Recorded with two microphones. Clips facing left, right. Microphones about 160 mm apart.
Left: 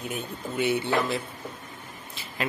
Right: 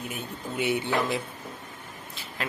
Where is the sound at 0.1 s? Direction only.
15° right (ahead or behind).